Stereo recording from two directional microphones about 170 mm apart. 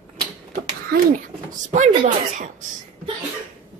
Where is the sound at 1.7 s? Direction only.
45° right (ahead or behind).